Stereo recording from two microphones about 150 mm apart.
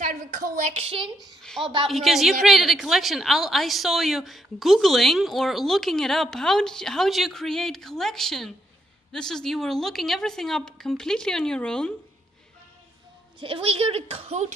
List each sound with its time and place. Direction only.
0.1 s a woman's voice: 60° right (ahead or behind); by 1.4 s 30° right (ahead or behind)
1.4 s a sound: 5° left (ahead or behind)
1.9 s a woman's voice: centre (ahead or behind)
13.4 s a woman's voice: 35° right (ahead or behind)